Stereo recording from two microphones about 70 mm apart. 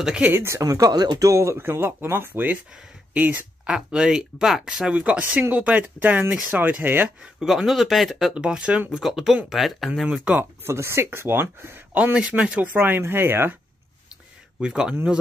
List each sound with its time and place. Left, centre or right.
0.2 s speech: right
0.6 s speech: right
7.3 s speech: centre
8.4 s speech: centre
8.9 s speech: centre
10.0 s speech: centre
10.6 s speech: right
12.1 s speech: centre; by 13.6 s right
14.6 s speech: centre